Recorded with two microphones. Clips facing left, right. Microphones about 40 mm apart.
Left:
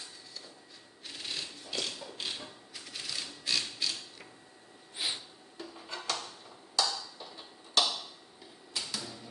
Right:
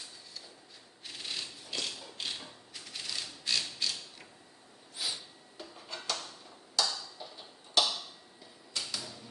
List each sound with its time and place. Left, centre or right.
1.0 s a sound: centre
2.1 s typewriter: centre
4.9 s sniff: left
5.6 s music: centre
6.7 s tick-tock: centre
8.7 s typewriter: centre